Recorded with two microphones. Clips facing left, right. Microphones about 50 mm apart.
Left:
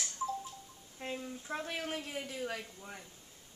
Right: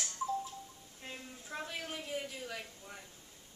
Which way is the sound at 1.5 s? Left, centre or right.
Left.